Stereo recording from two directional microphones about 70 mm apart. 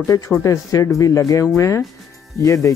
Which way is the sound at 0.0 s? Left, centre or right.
Left.